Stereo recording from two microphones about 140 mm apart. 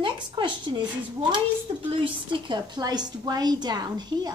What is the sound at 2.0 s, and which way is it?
Speech, 35° right (ahead or behind).